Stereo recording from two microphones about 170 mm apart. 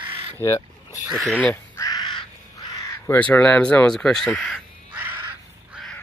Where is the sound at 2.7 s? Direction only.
15° left (ahead or behind).